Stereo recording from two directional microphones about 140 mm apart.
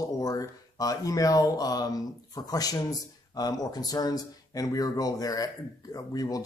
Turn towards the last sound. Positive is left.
turn(degrees=25)  # may be behind; listen again after turning